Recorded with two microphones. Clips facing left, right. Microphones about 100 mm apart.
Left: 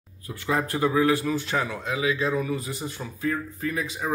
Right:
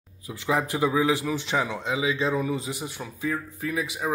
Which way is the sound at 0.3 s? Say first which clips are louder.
Even; 15° right (ahead or behind).